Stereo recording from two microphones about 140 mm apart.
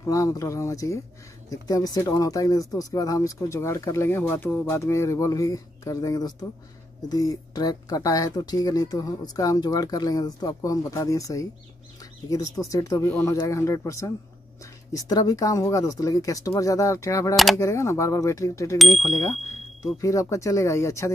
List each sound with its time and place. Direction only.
0.0 s speech: 25° left (ahead or behind)
18.8 s speech: centre (ahead or behind)
20.0 s speech: 20° left (ahead or behind)